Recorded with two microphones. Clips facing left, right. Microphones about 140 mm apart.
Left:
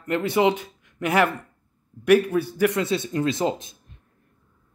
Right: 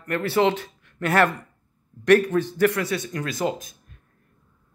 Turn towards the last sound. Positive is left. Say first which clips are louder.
# left 3 dB
turn(degrees=25)  # may be behind; listen again after turning